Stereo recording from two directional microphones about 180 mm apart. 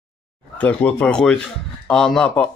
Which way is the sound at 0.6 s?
5° left (ahead or behind).